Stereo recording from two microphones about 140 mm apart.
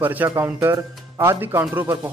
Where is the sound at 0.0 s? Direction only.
15° right (ahead or behind).